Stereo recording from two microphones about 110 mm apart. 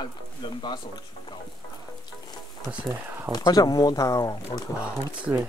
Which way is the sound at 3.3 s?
35° left (ahead or behind).